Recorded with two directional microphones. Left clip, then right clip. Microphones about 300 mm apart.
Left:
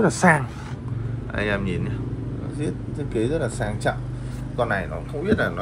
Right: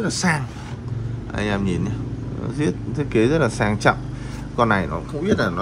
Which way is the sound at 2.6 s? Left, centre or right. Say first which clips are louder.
Right 7 dB; centre.